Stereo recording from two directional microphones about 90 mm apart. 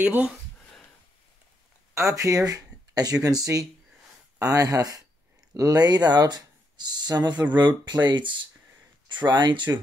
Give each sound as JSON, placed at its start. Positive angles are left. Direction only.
{"t": 0.0, "sound": "speech", "side_deg": -20}
{"t": 2.0, "sound": "speech", "side_deg": -35}